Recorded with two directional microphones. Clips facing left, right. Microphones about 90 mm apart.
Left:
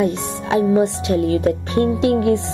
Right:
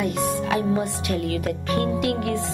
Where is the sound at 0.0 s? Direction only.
25° left (ahead or behind).